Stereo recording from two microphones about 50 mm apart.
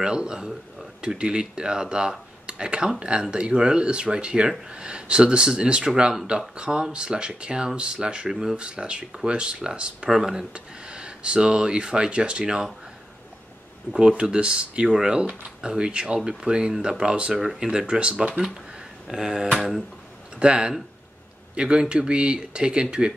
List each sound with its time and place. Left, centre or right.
0.0 s speech: centre
8.3 s speech: centre
8.5 s speech: right
10.0 s speech: centre
10.5 s speech: centre
13.9 s speech: right
19.0 s speech: centre
20.3 s speech: centre